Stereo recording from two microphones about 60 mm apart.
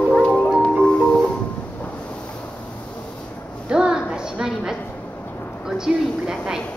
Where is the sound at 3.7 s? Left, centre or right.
Centre.